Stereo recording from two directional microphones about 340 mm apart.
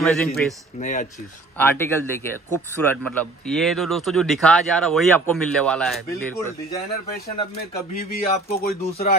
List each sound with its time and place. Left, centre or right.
0.0 s speech: centre
0.7 s speech: left
1.6 s speech: centre
8.0 s speech: left